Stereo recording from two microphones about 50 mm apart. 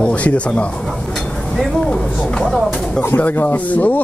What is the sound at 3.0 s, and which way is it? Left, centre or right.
Speech, left.